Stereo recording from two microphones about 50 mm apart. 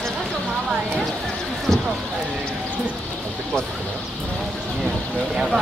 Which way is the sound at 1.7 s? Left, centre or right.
Centre.